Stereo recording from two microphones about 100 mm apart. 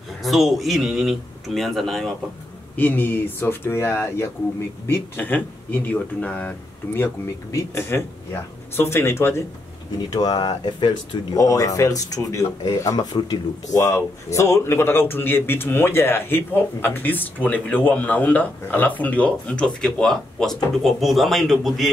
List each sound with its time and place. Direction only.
0.2 s speech: centre (ahead or behind)
2.7 s speech: 20° left (ahead or behind)
7.5 s speech: 25° left (ahead or behind)
10.0 s speech: 45° left (ahead or behind)
11.3 s speech: 35° left (ahead or behind); by 21.9 s centre (ahead or behind)